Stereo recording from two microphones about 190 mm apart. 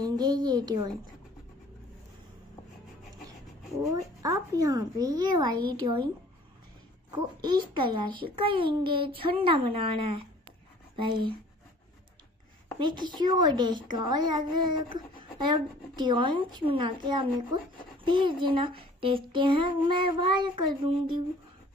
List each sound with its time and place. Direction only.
0.0 s speech: 20° right (ahead or behind)
3.9 s speech: 20° right (ahead or behind)
7.1 s speech: 25° right (ahead or behind)
12.7 s speech: 25° right (ahead or behind)